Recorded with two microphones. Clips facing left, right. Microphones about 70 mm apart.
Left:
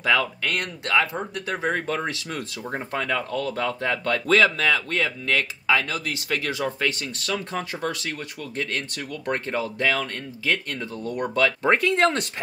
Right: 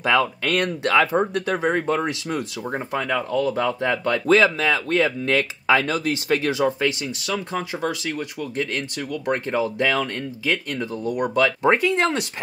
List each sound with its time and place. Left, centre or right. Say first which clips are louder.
0.0 s speech: right 3 dB; right
4.8 s speech: right 5 dB; right; by 12.3 s centre